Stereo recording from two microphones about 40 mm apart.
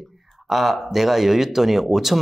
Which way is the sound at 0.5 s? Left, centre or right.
Centre.